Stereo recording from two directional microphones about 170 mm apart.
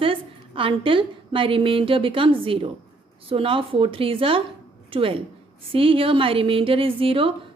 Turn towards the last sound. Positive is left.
turn(degrees=-30)  # may be behind; listen again after turning